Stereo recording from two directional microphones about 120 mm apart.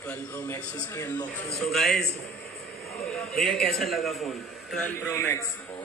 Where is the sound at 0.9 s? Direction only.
25° left (ahead or behind).